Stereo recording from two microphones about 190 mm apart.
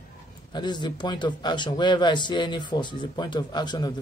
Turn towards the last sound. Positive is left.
turn(degrees=20)  # may be behind; listen again after turning